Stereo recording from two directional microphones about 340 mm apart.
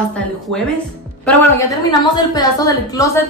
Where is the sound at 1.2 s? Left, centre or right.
Centre.